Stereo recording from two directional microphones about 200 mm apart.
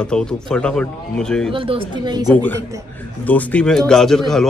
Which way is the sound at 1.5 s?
25° right (ahead or behind).